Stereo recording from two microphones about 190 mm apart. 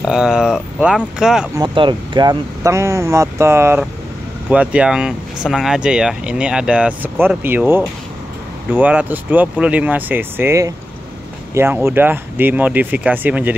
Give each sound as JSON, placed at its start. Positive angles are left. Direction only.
{"t": 0.0, "sound": "speech", "side_deg": -5}
{"t": 1.6, "sound": "speech", "side_deg": -25}